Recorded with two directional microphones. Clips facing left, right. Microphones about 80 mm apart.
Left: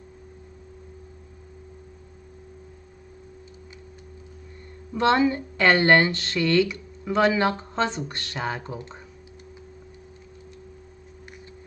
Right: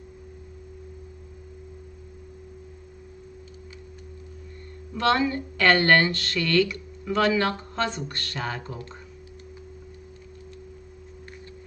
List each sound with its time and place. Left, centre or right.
4.9 s speech: left